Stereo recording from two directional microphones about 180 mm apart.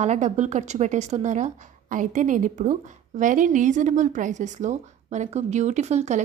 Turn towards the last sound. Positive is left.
turn(degrees=-40)  # may be behind; listen again after turning